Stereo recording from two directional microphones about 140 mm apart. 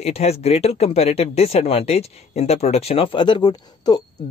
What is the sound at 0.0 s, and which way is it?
Speech, 50° left (ahead or behind).